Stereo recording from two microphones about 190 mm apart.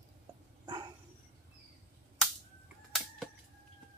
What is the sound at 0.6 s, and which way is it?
Dog, 25° right (ahead or behind).